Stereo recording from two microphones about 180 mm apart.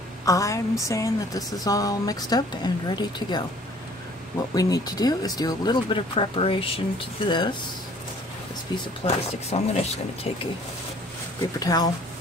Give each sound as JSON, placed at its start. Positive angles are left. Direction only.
{"t": 0.2, "sound": "a woman's voice", "side_deg": 20}
{"t": 4.6, "sound": "a woman's voice", "side_deg": 20}
{"t": 9.0, "sound": "speech", "side_deg": 35}
{"t": 11.6, "sound": "a woman's voice", "side_deg": 20}